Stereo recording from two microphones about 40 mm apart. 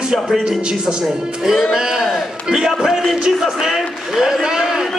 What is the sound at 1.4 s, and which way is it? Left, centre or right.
A man's voice, centre.